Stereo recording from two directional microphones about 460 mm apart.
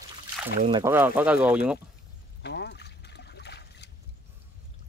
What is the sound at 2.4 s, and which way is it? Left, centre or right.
Boat, left.